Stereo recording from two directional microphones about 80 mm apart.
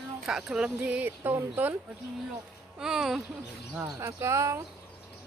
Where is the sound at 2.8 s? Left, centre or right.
Centre.